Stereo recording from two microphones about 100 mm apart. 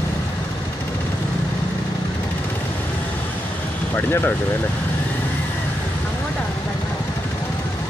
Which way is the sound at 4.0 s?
20° left (ahead or behind).